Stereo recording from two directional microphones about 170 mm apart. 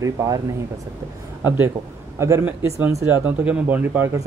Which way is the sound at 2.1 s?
15° right (ahead or behind).